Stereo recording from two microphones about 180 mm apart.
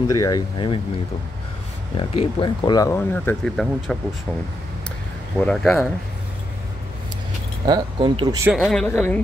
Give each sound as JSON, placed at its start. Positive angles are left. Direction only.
{"t": 0.1, "sound": "speech", "side_deg": 20}
{"t": 2.0, "sound": "speech", "side_deg": 25}
{"t": 3.0, "sound": "speech", "side_deg": 10}
{"t": 5.4, "sound": "speech", "side_deg": 5}
{"t": 7.6, "sound": "speech", "side_deg": -25}
{"t": 8.5, "sound": "speech", "side_deg": 0}